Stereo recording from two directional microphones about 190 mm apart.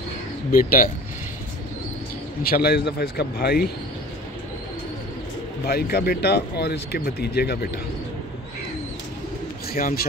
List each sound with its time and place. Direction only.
0.5 s speech: 50° left (ahead or behind)
2.4 s speech: 55° left (ahead or behind)
5.7 s speech: 55° left (ahead or behind)
9.7 s speech: 50° left (ahead or behind)